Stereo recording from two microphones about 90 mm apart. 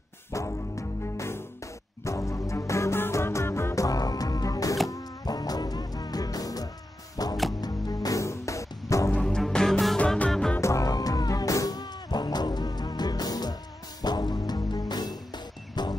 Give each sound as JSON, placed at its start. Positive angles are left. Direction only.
{"t": 0.3, "sound": "music", "side_deg": 35}
{"t": 9.1, "sound": "music", "side_deg": 10}
{"t": 9.9, "sound": "music", "side_deg": 15}
{"t": 10.6, "sound": "music", "side_deg": 35}